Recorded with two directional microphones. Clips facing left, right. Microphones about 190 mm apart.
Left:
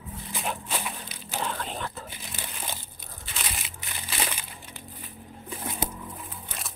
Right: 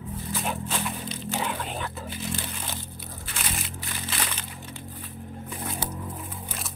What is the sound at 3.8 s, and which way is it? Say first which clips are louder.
Crumpling: right 1 dB; 20° left (ahead or behind).